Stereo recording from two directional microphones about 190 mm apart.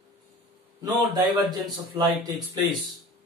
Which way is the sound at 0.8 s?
20° right (ahead or behind).